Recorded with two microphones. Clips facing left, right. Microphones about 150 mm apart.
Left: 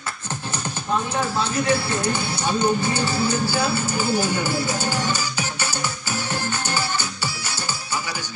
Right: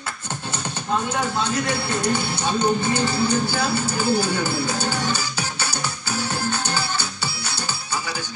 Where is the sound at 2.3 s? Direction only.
20° right (ahead or behind).